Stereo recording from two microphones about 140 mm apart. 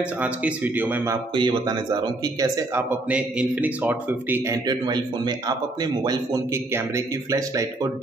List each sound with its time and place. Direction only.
0.0 s speech: 10° right (ahead or behind)
1.3 s speech: 35° right (ahead or behind)
2.9 s speech: 10° right (ahead or behind)
4.5 s speech: 30° right (ahead or behind)